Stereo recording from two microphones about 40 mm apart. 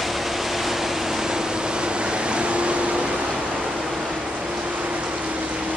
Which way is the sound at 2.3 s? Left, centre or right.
Right.